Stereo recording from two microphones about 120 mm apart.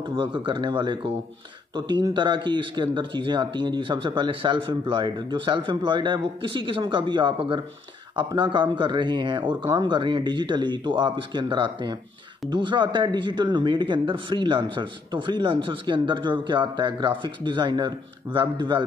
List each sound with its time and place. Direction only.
0.0 s speech: 45° right (ahead or behind)